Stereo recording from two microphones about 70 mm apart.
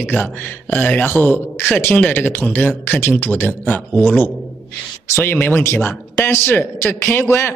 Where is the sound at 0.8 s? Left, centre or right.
Centre.